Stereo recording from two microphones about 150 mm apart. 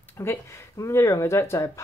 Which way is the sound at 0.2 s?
20° left (ahead or behind).